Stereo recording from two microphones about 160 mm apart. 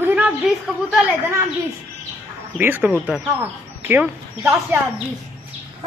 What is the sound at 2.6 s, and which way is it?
Speech, 10° right (ahead or behind).